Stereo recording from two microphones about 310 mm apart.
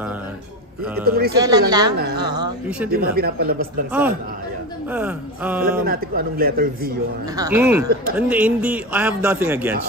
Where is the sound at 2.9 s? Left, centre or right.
Right.